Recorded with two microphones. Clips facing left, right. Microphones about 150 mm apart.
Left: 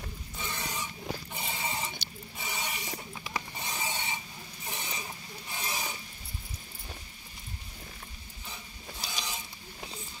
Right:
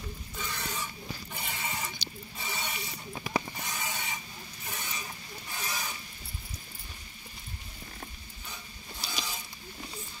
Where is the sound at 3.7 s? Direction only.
25° left (ahead or behind).